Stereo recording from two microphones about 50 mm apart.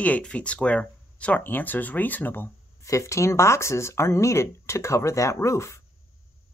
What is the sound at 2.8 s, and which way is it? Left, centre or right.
Speech, left.